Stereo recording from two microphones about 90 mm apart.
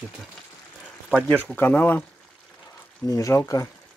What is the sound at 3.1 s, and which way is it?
Speech, 40° left (ahead or behind).